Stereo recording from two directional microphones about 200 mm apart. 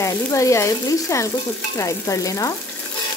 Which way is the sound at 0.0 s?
15° left (ahead or behind).